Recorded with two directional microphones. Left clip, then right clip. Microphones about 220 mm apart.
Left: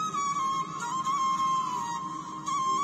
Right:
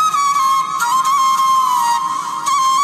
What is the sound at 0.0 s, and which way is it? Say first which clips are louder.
Music: right 15 dB; 45° right (ahead or behind).